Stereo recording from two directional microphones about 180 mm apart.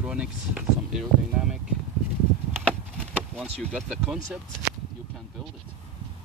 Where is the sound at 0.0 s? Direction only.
5° right (ahead or behind).